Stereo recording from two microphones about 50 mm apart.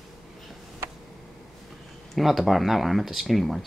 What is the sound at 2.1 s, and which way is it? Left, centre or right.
Speech, centre.